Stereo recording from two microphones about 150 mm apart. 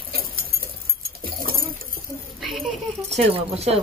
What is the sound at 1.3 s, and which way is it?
Bird, 75° right (ahead or behind).